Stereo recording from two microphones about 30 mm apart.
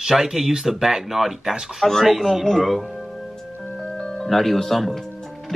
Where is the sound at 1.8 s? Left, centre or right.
Centre.